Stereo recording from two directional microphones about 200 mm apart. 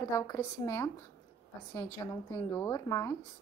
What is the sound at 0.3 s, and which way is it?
Speech, 15° left (ahead or behind).